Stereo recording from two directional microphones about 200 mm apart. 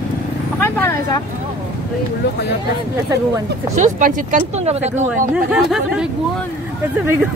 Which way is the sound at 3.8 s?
40° right (ahead or behind).